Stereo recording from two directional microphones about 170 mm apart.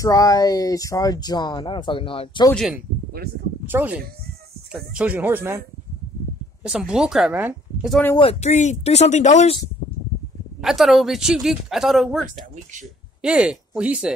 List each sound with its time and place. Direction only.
0.0 s speech: 20° left (ahead or behind)
2.5 s speech: centre (ahead or behind)
6.6 s speech: 5° right (ahead or behind)
8.2 s speech: 40° left (ahead or behind)
10.6 s speech: centre (ahead or behind)